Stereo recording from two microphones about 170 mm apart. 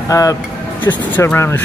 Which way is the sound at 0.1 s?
20° left (ahead or behind).